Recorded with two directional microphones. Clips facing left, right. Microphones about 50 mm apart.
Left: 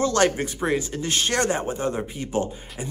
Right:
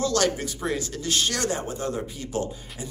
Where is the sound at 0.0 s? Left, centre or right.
Left.